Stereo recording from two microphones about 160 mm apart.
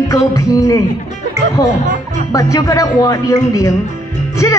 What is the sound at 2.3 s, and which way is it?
Speech, 20° left (ahead or behind).